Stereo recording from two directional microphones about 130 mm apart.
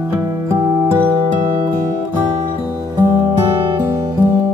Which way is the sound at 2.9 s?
15° right (ahead or behind).